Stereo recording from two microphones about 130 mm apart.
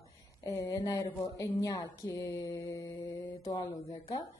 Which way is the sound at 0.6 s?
30° left (ahead or behind).